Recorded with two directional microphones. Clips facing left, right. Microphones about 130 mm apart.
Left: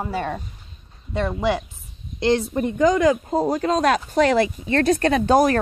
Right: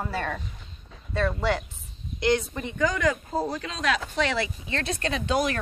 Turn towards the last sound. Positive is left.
turn(degrees=45)  # may be behind; listen again after turning